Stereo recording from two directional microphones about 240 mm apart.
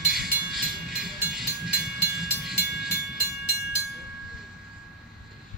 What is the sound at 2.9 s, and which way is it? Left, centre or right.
Train, left.